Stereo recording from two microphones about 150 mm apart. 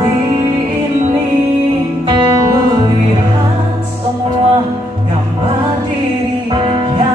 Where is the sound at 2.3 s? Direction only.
25° right (ahead or behind).